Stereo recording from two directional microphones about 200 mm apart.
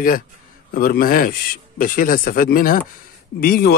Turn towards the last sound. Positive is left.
turn(degrees=50)  # may be behind; listen again after turning